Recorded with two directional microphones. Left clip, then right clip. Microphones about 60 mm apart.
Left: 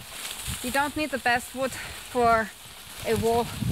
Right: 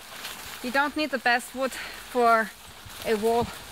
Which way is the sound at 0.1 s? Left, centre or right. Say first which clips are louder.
Left 2 dB; left.